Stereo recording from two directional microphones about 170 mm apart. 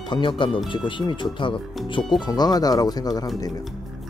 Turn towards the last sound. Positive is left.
turn(degrees=20)  # may be behind; listen again after turning